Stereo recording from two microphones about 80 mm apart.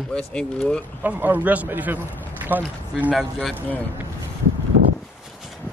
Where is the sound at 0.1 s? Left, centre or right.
Centre.